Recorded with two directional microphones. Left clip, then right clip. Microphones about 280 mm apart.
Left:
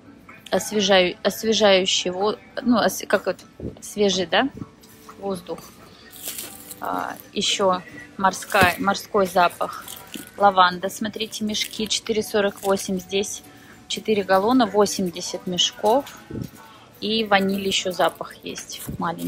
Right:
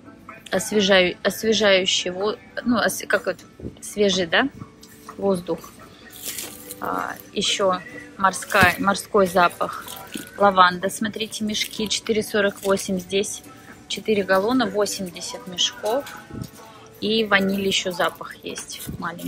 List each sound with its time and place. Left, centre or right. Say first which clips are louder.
0.5 s a woman's voice: even; centre
6.8 s a woman's voice: even; centre
17.0 s a woman's voice: even; centre